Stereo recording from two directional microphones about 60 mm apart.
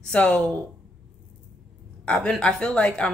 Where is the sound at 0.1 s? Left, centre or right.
Centre.